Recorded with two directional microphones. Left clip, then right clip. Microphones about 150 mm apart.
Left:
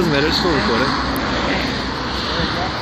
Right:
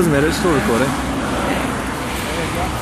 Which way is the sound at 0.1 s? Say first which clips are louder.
Even; 55° right (ahead or behind).